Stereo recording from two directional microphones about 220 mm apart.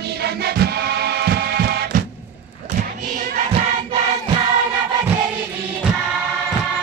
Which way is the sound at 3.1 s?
40° right (ahead or behind).